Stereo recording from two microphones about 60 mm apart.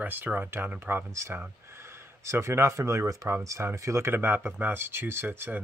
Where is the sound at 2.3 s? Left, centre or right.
Right.